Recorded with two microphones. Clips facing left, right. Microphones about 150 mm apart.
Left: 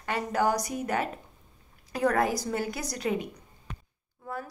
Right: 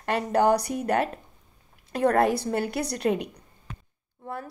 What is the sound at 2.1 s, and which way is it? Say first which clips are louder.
A woman's voice: right 4 dB; 65° right (ahead or behind).